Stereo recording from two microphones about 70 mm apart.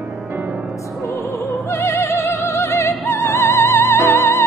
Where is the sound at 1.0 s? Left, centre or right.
Left.